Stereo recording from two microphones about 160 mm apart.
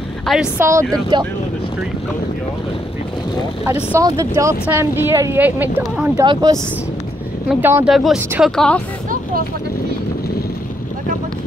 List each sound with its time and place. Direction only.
0.6 s speech: 20° right (ahead or behind)
1.1 s speech: 30° right (ahead or behind)
4.0 s speech: 20° right (ahead or behind)
7.4 s speech: 10° right (ahead or behind)
8.2 s speech: 15° right (ahead or behind)
8.5 s speech: 5° left (ahead or behind)